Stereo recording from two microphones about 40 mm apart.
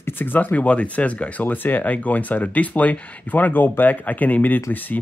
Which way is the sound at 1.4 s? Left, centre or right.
Left.